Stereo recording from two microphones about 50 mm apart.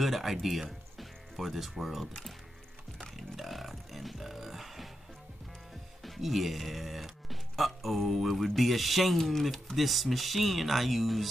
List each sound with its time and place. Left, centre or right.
0.0 s speech: centre
3.0 s music: centre
6.0 s music: centre
8.5 s speech: centre